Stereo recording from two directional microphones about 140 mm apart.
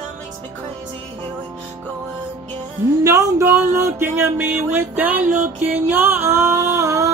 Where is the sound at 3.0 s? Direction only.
25° right (ahead or behind).